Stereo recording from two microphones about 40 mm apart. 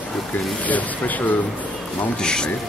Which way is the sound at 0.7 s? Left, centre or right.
Left.